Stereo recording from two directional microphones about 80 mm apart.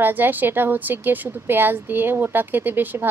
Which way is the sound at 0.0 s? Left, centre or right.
Right.